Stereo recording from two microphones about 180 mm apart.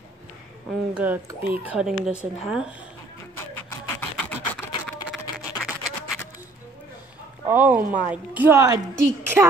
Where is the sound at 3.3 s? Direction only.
10° left (ahead or behind).